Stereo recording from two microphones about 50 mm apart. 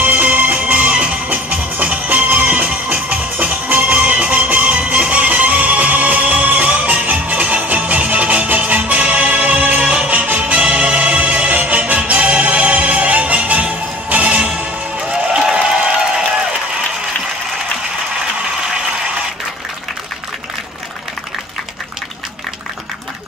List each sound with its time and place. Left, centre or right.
0.0 s music: right
15.5 s crowd: centre
18.4 s a sound: centre